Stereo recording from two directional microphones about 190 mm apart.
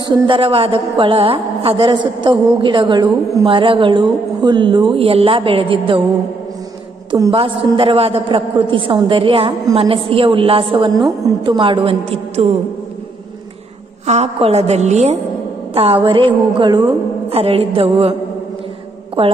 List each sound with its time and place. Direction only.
0.3 s a man's voice: 30° right (ahead or behind)
7.1 s a man's voice: 25° right (ahead or behind)
14.0 s a woman's voice: 35° right (ahead or behind)
19.2 s a man's voice: 30° right (ahead or behind)